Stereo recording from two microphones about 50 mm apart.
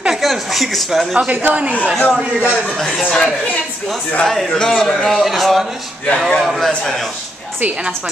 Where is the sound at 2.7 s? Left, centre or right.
Centre.